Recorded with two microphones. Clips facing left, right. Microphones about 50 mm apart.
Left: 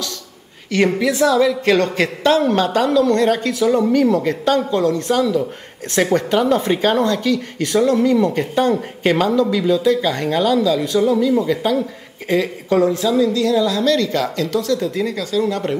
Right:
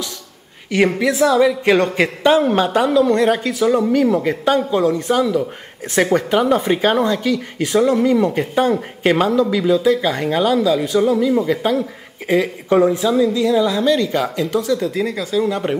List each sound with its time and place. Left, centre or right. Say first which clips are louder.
0.7 s speech: right 1 dB; centre